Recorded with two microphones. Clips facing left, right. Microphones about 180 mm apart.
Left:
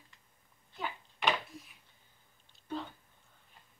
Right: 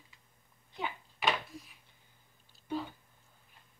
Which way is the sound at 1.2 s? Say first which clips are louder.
Even; centre (ahead or behind).